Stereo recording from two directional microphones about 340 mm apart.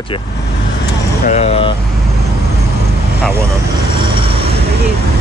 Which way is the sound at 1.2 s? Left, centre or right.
Centre.